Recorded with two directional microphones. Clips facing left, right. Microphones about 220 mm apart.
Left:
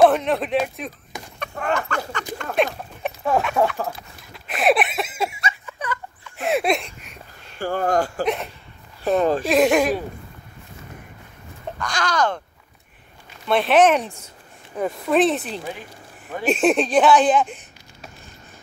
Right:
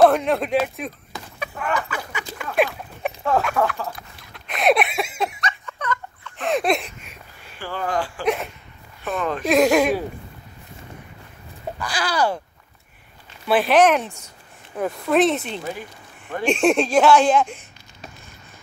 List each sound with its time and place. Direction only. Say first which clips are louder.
0.0 s speech: even; centre (ahead or behind)
3.6 s speech: left 5 dB; 25° left (ahead or behind)
3.9 s a sound: left 1 dB; 5° left (ahead or behind)
6.7 s a sound: even; centre (ahead or behind)
7.5 s speech: left 5 dB; 45° left (ahead or behind)
9.5 s speech: right 3 dB; centre (ahead or behind)
11.8 s speech: even; 5° right (ahead or behind)
13.5 s speech: even; centre (ahead or behind)